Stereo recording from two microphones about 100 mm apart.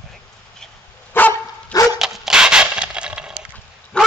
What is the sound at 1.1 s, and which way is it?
Dog, 20° left (ahead or behind).